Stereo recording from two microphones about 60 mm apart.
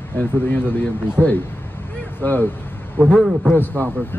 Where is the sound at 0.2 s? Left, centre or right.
Left.